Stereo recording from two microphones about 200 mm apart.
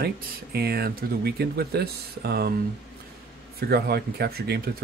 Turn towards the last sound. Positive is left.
turn(degrees=-50)  # may be behind; listen again after turning